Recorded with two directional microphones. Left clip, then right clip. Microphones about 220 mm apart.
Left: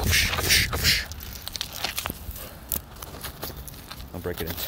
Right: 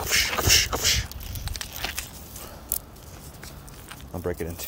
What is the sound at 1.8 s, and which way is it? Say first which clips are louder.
Biting: left 1 dB; 10° right (ahead or behind).